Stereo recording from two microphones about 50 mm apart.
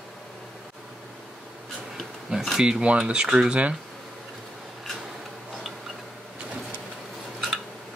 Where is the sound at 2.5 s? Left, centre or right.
Centre.